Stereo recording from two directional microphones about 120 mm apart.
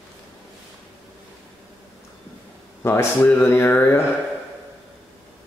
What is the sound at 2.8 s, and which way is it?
Mantra, 20° left (ahead or behind).